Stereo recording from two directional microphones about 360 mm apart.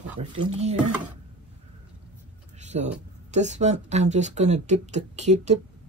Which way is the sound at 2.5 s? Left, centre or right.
Centre.